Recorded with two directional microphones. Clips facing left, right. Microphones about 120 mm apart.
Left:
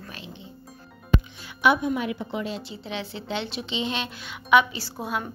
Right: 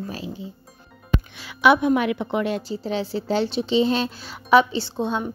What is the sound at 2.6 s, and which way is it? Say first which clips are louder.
Speech: right 8 dB; 35° right (ahead or behind).